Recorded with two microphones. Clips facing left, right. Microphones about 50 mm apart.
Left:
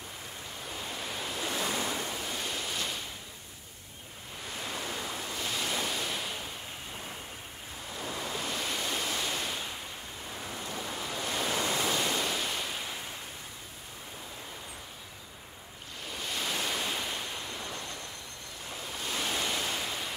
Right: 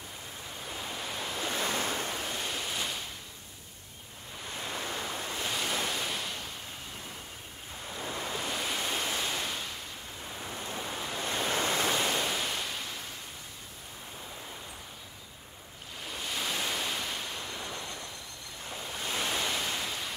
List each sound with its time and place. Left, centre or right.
0.7 s waves: centre
1.5 s waves: right
2.2 s waves: centre
4.6 s waves: right
5.4 s waves: centre
7.9 s waves: right
8.4 s waves: centre
10.4 s ocean: centre
10.9 s waves: centre
11.1 s waves: right
12.0 s ocean: centre
16.1 s waves: centre
19.0 s waves: centre